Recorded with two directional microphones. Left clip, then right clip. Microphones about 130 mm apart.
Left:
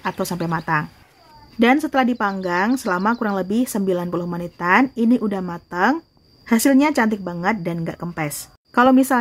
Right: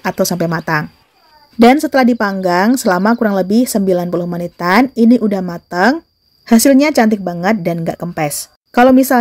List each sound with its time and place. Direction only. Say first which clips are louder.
0.0 s a woman's voice: right 9 dB; 35° right (ahead or behind)